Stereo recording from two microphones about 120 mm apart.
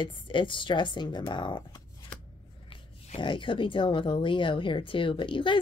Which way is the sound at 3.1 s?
45° left (ahead or behind).